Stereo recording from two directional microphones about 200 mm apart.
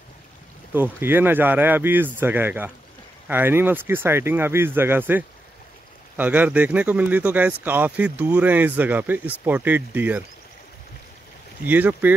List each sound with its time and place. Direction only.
0.7 s speech: 10° right (ahead or behind)
11.6 s speech: 10° right (ahead or behind)